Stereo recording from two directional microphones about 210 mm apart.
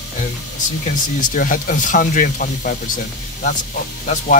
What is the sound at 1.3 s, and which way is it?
Speech, 40° left (ahead or behind).